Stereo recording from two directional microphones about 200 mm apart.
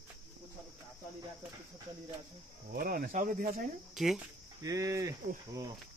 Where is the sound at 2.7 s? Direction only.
50° right (ahead or behind).